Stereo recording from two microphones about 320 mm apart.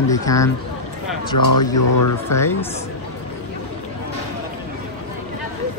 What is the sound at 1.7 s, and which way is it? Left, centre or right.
Speech, left.